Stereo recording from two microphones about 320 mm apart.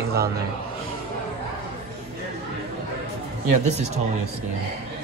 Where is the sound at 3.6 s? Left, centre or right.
Right.